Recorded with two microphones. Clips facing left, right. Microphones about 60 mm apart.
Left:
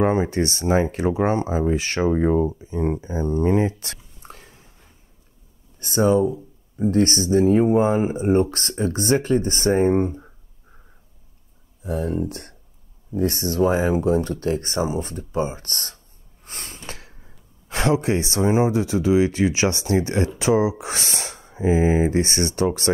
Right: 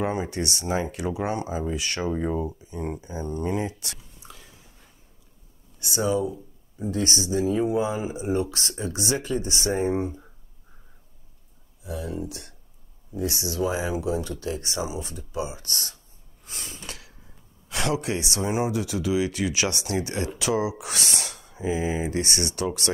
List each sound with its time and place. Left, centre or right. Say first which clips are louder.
0.0 s speech: left 7 dB; left
5.8 s speech: left 7 dB; left
11.8 s speech: left 7 dB; left